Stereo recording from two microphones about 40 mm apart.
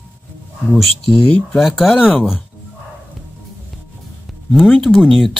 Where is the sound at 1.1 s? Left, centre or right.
Left.